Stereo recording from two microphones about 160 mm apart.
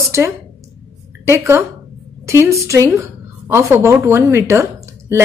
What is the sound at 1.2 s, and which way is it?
A woman's voice, 15° right (ahead or behind).